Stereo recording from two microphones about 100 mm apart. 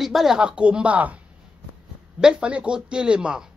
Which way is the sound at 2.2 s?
10° right (ahead or behind).